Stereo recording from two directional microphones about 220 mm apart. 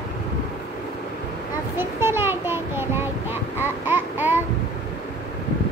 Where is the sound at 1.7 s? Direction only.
10° right (ahead or behind).